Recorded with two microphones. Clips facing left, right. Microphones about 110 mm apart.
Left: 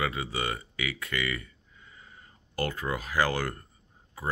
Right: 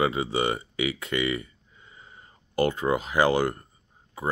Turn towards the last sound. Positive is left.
turn(degrees=-20)  # may be behind; listen again after turning